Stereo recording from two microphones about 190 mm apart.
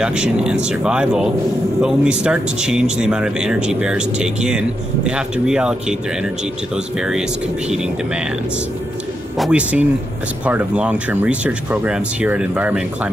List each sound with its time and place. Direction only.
0.0 s speech: 5° right (ahead or behind)
7.0 s speech: 5° right (ahead or behind)
9.4 s speech: 5° right (ahead or behind)